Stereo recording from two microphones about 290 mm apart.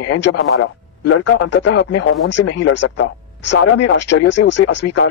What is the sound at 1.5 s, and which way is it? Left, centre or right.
Speech, left.